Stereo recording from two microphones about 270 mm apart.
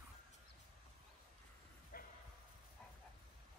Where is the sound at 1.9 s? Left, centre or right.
Left.